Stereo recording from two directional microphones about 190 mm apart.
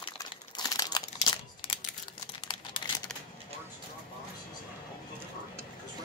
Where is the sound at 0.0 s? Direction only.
20° left (ahead or behind).